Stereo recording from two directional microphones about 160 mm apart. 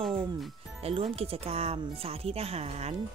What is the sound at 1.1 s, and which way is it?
Speech, 40° right (ahead or behind).